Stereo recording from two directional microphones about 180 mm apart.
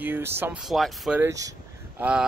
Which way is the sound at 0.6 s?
Centre (ahead or behind).